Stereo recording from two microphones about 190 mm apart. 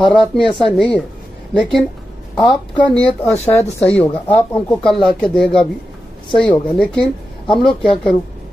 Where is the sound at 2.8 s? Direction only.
5° left (ahead or behind).